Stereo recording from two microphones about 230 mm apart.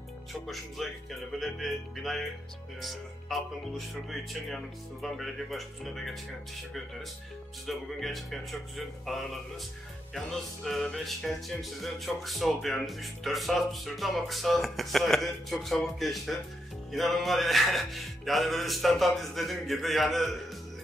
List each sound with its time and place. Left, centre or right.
0.3 s speech: centre
7.6 s speech: centre